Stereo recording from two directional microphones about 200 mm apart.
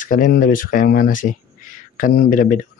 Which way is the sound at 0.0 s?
40° left (ahead or behind).